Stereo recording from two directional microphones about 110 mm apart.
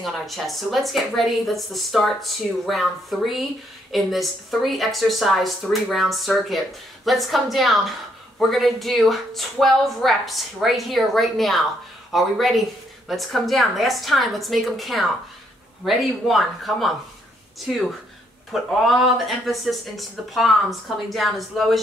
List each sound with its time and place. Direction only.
0.0 s speech: centre (ahead or behind)